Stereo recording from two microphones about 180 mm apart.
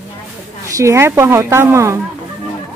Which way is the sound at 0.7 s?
15° right (ahead or behind).